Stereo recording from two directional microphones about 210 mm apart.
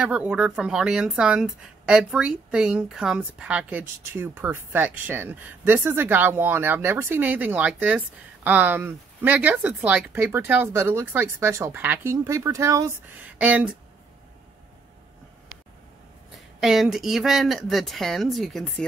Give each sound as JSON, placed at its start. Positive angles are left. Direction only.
{"t": 0.0, "sound": "a woman's voice", "side_deg": -5}
{"t": 16.3, "sound": "speech", "side_deg": 0}